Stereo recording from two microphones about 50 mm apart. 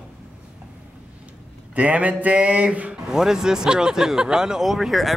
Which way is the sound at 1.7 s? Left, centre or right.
Right.